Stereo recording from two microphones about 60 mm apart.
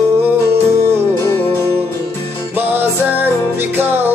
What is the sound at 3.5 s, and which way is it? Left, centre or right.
Music, right.